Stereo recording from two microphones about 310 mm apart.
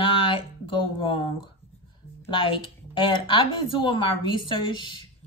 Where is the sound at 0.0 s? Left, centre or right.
Centre.